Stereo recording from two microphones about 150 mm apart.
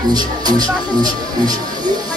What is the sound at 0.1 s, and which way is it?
Speech, 25° right (ahead or behind).